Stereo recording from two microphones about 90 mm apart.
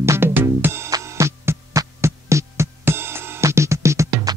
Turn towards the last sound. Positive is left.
turn(degrees=-35)  # may be behind; listen again after turning